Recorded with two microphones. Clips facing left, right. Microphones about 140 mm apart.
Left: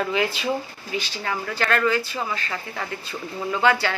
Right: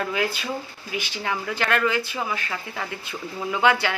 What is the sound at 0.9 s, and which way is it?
Speech, 15° right (ahead or behind).